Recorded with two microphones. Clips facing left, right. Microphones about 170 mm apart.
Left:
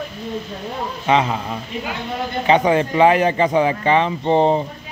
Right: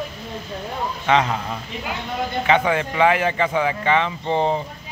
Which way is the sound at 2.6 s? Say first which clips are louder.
Left 4 dB; 35° left (ahead or behind).